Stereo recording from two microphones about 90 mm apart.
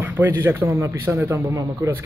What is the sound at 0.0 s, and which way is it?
A man's voice, 25° right (ahead or behind).